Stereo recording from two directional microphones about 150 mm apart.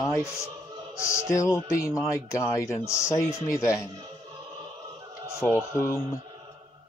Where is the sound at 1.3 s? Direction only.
20° left (ahead or behind).